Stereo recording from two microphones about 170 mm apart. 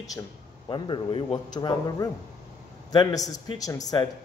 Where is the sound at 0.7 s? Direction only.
25° left (ahead or behind).